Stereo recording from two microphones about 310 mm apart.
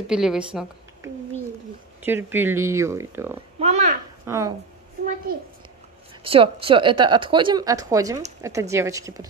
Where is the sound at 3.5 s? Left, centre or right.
Right.